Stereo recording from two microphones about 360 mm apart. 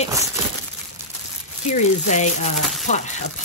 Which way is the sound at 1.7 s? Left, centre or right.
Centre.